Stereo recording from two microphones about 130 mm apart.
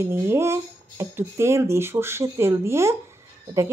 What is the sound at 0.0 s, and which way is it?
A woman's voice, 20° right (ahead or behind).